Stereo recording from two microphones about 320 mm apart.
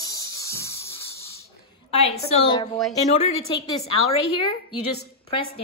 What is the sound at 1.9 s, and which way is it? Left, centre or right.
Speech, centre.